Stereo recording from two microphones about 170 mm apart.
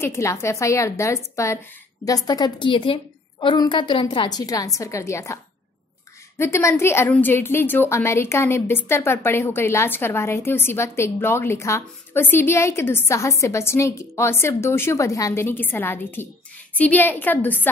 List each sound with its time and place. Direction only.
0.0 s a woman's voice: 15° left (ahead or behind)